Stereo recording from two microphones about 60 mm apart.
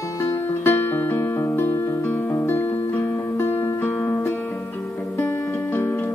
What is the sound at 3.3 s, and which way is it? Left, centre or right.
Music, left.